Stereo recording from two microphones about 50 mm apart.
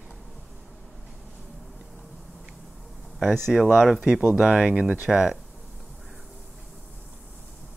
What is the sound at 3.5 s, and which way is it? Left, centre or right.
Speech, centre.